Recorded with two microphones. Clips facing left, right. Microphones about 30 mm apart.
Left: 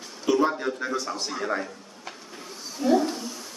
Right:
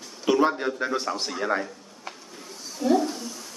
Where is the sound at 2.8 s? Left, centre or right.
Centre.